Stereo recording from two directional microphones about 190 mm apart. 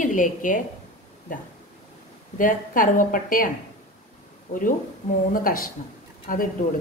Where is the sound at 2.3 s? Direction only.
45° left (ahead or behind).